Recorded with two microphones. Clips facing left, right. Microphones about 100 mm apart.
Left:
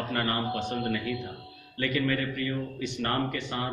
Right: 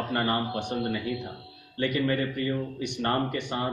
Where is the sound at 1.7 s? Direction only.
25° right (ahead or behind).